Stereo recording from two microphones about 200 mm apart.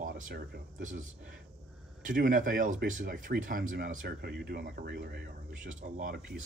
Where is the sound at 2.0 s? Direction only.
40° right (ahead or behind).